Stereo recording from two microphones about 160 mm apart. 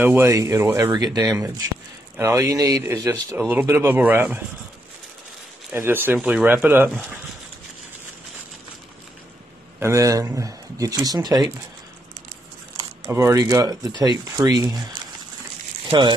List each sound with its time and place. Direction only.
0.0 s speech: 15° right (ahead or behind)
5.7 s speech: 15° right (ahead or behind)
9.8 s speech: 20° right (ahead or behind)
13.1 s speech: 20° right (ahead or behind)